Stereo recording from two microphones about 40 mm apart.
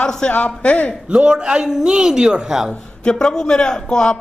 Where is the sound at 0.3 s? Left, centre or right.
Left.